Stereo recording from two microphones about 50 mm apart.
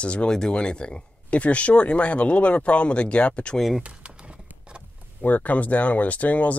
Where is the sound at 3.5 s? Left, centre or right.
Centre.